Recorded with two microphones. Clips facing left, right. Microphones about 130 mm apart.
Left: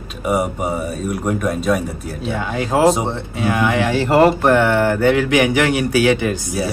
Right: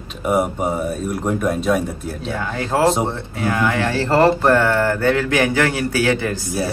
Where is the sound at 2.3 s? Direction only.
20° left (ahead or behind).